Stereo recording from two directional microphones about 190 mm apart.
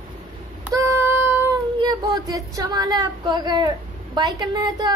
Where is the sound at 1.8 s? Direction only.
20° right (ahead or behind).